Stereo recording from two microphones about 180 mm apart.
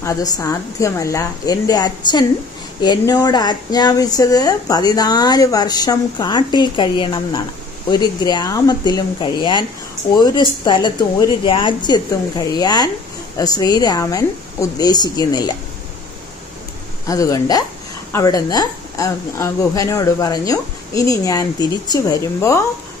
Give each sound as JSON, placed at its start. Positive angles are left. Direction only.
{"t": 0.0, "sound": "a woman's voice", "side_deg": 15}
{"t": 17.1, "sound": "speech", "side_deg": 20}